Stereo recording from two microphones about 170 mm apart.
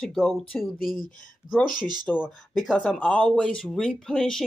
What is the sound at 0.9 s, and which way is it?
Speech, 55° left (ahead or behind).